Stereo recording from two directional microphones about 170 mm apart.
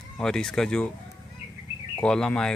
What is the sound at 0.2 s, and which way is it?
Speech, 5° left (ahead or behind).